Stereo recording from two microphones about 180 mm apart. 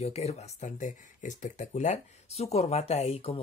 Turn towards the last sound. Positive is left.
turn(degrees=35)  # may be behind; listen again after turning